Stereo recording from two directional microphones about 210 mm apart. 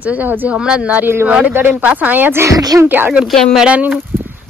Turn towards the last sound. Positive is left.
turn(degrees=-5)  # may be behind; listen again after turning